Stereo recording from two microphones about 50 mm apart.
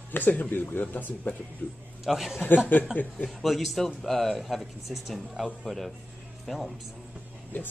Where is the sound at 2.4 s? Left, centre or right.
Left.